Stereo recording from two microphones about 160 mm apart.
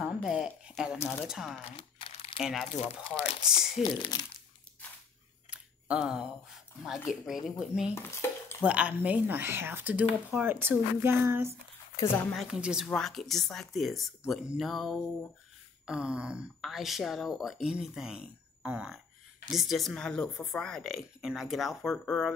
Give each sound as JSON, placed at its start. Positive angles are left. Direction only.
{"t": 0.0, "sound": "a sound", "side_deg": -5}
{"t": 0.9, "sound": "speech", "side_deg": 15}
{"t": 1.2, "sound": "speech", "side_deg": -5}
{"t": 1.8, "sound": "crumpling", "side_deg": 35}
{"t": 2.4, "sound": "speech", "side_deg": 0}
{"t": 3.2, "sound": "speech", "side_deg": 40}
{"t": 4.0, "sound": "speech", "side_deg": 25}
{"t": 5.5, "sound": "a sound", "side_deg": -5}
{"t": 7.1, "sound": "speech", "side_deg": 0}
{"t": 7.9, "sound": "dishes", "side_deg": 15}
{"t": 8.6, "sound": "speech", "side_deg": -10}
{"t": 12.3, "sound": "speech", "side_deg": -5}